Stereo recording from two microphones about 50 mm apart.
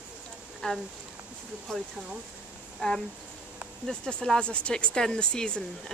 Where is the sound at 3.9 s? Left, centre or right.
Centre.